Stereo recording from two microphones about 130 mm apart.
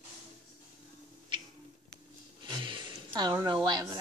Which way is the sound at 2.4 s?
40° right (ahead or behind).